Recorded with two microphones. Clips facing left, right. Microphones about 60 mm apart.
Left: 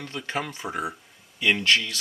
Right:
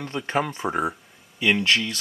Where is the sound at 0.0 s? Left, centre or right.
Centre.